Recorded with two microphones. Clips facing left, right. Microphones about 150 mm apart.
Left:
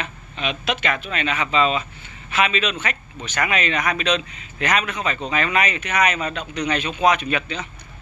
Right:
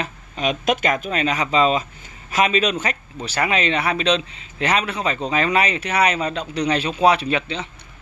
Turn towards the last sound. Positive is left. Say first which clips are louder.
# right 2 dB
turn(degrees=-25)  # may be behind; listen again after turning